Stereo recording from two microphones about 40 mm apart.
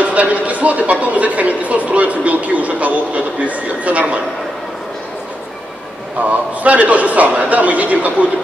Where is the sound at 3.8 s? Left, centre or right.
Right.